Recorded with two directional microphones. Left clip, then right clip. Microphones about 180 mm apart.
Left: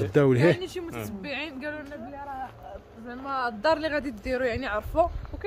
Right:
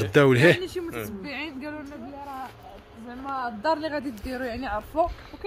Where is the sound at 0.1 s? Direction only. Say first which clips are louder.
Right 4 dB; 5° left (ahead or behind).